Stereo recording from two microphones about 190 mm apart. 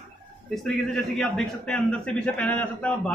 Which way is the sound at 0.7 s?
Centre (ahead or behind).